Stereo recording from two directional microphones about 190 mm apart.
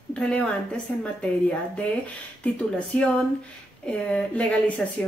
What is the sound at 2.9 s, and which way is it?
A woman's voice, 5° left (ahead or behind).